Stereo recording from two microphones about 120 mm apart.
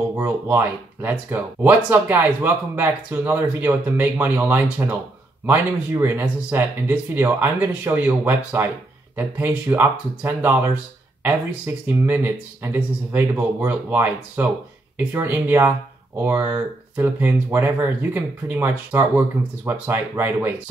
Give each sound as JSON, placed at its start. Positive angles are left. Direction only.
{"t": 0.2, "sound": "speech", "side_deg": -20}